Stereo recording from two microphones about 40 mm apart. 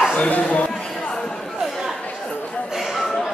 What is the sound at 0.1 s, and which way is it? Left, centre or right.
Speech, left.